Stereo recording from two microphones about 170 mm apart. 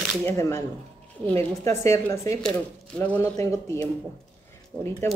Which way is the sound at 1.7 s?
15° left (ahead or behind).